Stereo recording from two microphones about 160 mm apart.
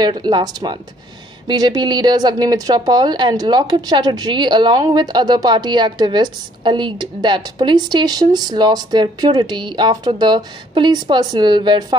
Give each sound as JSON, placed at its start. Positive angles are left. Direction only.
{"t": 0.0, "sound": "speech", "side_deg": -25}